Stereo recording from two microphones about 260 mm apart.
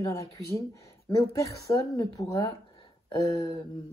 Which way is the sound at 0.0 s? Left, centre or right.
Centre.